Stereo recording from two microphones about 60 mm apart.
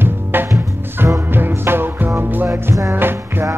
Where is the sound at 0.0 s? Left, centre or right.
Right.